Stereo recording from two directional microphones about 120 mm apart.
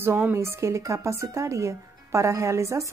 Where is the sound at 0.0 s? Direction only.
20° right (ahead or behind).